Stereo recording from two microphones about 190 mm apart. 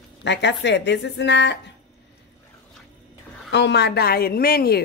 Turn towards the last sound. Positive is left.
turn(degrees=55)  # may be behind; listen again after turning